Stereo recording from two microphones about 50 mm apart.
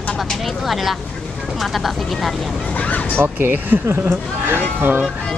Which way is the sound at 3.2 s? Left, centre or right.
Right.